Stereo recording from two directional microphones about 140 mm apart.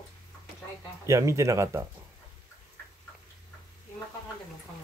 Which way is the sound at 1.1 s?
20° right (ahead or behind).